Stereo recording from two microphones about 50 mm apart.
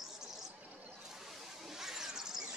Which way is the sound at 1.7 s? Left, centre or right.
Centre.